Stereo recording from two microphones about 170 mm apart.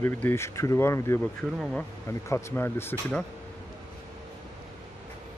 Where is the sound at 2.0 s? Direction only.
15° left (ahead or behind).